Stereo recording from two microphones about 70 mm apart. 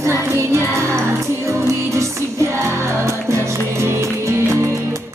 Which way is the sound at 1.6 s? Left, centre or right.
Right.